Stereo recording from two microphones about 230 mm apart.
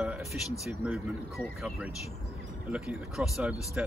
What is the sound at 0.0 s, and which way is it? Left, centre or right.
Speech, centre.